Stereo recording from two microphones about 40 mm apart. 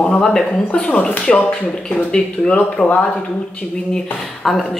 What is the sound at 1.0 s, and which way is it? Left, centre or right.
Speech, left.